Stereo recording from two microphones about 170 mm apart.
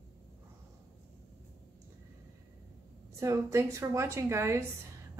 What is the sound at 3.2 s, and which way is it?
Speech, 20° right (ahead or behind).